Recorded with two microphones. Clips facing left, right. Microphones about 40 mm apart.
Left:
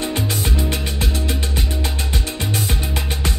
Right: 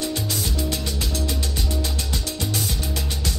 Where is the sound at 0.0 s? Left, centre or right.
Left.